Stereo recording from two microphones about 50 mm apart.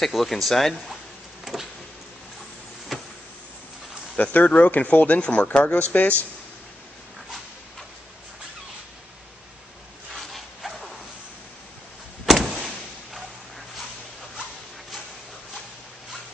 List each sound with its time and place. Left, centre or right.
0.0 s speech: centre
1.4 s vehicle: centre
2.9 s power windows: centre
4.2 s speech: left
5.2 s speech: left
10.3 s dog: centre
12.3 s vehicle: centre